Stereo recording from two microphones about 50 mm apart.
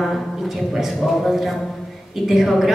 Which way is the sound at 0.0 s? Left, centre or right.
Centre.